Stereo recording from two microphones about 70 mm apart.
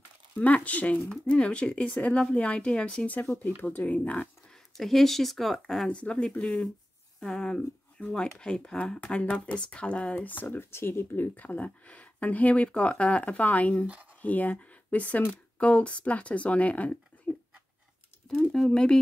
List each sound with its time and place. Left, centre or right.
0.4 s speech: left
4.7 s speech: centre
6.0 s speech: centre; by 11.2 s left
11.3 s speech: left
18.3 s speech: centre